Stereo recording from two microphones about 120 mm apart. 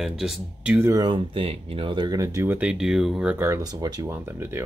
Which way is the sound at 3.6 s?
35° right (ahead or behind).